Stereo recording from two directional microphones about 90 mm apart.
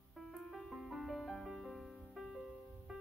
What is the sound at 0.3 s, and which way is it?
Music, 5° left (ahead or behind).